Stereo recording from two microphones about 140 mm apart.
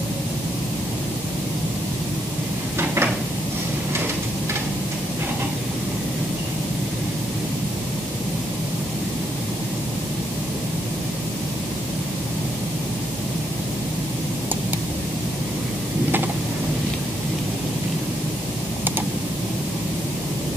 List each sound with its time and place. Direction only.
2.8 s cupboard open or close: 15° right (ahead or behind)